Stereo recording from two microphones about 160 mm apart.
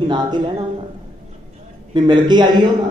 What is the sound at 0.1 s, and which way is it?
Speech, 30° right (ahead or behind).